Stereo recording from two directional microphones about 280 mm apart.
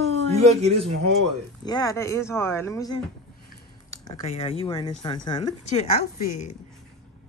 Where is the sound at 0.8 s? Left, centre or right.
Right.